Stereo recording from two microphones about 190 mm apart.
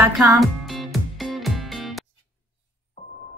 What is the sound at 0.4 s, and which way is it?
Music, centre (ahead or behind).